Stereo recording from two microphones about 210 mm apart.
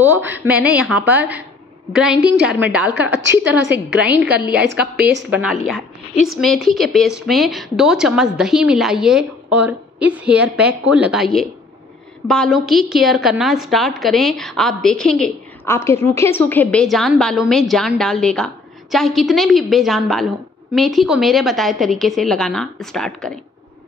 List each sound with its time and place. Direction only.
0.0 s a woman's voice: 10° right (ahead or behind)
2.4 s a woman's voice: 5° right (ahead or behind)
4.9 s a woman's voice: 50° right (ahead or behind)
5.3 s a woman's voice: centre (ahead or behind)